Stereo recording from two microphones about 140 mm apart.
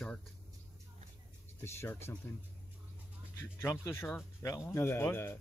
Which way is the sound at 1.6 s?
15° left (ahead or behind).